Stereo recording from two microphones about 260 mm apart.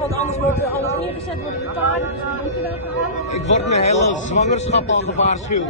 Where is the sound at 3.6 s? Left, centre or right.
Left.